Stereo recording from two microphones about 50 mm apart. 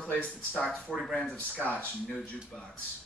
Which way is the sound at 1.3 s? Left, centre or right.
Left.